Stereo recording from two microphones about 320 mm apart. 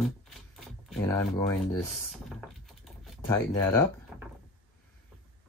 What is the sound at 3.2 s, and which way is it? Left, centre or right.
Speech, centre.